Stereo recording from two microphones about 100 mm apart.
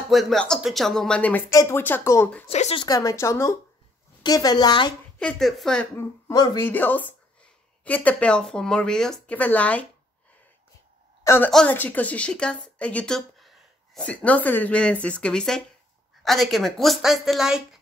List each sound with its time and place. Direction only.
0.1 s a woman's voice: centre (ahead or behind)
1.5 s speech: 35° left (ahead or behind)
1.8 s speech: 20° left (ahead or behind)
2.4 s speech: 60° left (ahead or behind)
2.9 s speech: 35° left (ahead or behind)
4.2 s a woman's voice: 40° left (ahead or behind)
5.2 s speech: 5° left (ahead or behind)
6.5 s speech: 20° left (ahead or behind)
11.2 s a woman's voice: 25° left (ahead or behind); by 17.6 s 5° right (ahead or behind)